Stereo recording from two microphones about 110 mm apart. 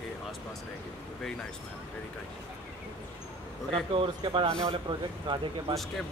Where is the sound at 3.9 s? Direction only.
55° right (ahead or behind).